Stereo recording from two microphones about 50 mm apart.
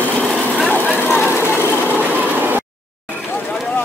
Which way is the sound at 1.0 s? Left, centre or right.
Left.